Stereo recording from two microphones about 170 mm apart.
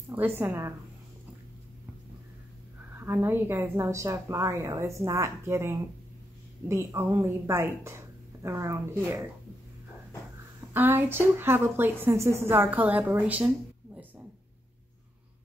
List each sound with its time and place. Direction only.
0.1 s a woman's voice: 10° right (ahead or behind)
2.9 s a woman's voice: 10° right (ahead or behind)
10.7 s a woman's voice: 10° right (ahead or behind)